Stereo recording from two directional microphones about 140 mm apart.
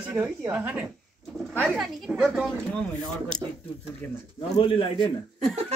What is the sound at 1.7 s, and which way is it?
Speech, 5° right (ahead or behind).